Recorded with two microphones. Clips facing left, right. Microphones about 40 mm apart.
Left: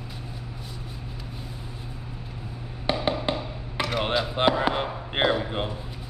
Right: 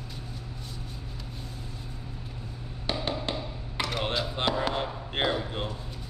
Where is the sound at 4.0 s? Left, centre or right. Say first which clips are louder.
Left 7 dB; centre.